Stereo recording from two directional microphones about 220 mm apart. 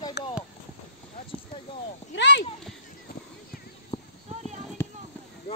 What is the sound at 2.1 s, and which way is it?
Speech, 55° left (ahead or behind).